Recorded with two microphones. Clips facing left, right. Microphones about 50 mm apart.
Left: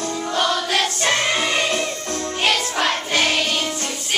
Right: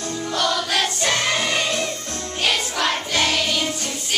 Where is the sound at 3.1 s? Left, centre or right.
Centre.